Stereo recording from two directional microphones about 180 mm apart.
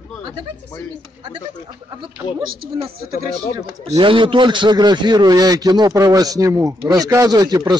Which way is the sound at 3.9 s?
25° right (ahead or behind).